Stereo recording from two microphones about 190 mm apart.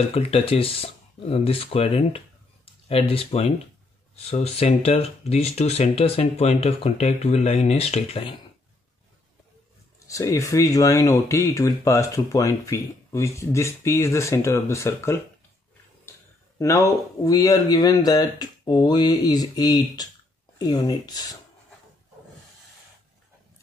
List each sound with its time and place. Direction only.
0.1 s speech: 30° left (ahead or behind)
9.9 s speech: 15° left (ahead or behind)
16.5 s speech: 15° left (ahead or behind)